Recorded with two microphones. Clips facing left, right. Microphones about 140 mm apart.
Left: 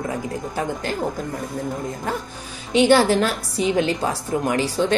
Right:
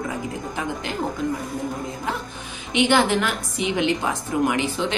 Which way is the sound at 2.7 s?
35° left (ahead or behind).